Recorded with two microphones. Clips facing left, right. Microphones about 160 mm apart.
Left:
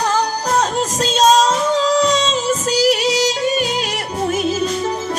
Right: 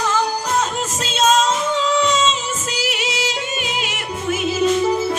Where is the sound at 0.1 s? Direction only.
35° left (ahead or behind).